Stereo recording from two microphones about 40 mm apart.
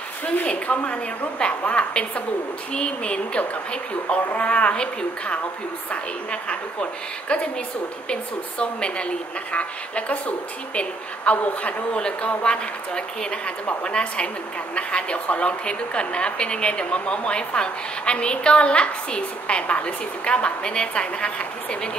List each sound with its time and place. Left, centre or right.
0.5 s a woman's voice: left
6.5 s a woman's voice: left